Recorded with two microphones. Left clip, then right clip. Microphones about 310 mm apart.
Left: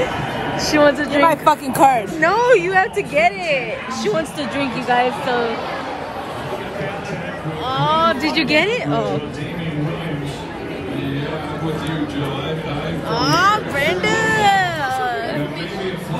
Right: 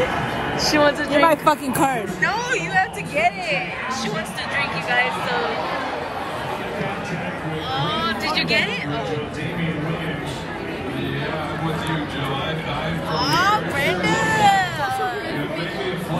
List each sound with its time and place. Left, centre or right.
0.6 s speech: centre
8.1 s speech: centre
13.1 s a sound: left